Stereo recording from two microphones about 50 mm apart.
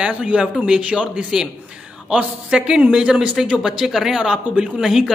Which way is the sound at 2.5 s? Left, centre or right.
Centre.